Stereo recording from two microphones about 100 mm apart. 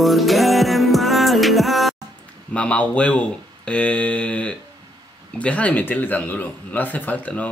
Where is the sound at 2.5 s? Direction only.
10° left (ahead or behind).